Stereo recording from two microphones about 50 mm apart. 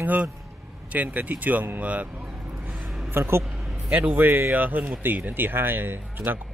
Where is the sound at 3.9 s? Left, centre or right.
Right.